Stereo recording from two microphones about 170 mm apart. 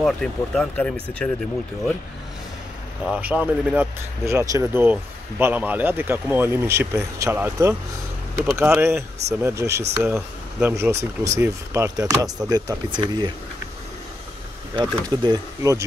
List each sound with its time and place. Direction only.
0.0 s speech: 5° left (ahead or behind)
3.1 s speech: 10° right (ahead or behind)
10.0 s speech: 5° right (ahead or behind)
10.8 s speech: 15° right (ahead or behind)
14.8 s speech: 25° right (ahead or behind)